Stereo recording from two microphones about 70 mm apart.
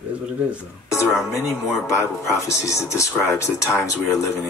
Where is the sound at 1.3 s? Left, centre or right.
Left.